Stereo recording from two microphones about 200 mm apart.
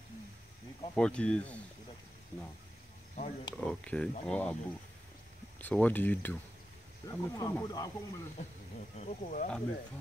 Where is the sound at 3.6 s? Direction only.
5° left (ahead or behind).